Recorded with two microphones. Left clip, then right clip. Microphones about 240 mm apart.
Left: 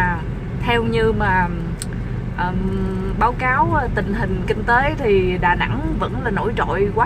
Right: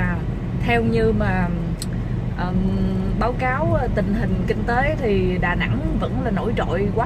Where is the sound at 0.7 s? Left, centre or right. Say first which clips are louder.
Left 2 dB; centre.